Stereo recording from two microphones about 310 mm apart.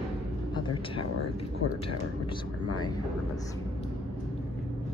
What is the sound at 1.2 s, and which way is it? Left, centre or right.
Speech, left.